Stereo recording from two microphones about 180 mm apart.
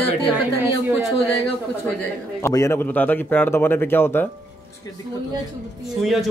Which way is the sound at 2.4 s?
15° left (ahead or behind).